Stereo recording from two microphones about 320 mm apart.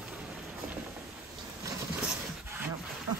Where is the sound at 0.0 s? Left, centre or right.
Centre.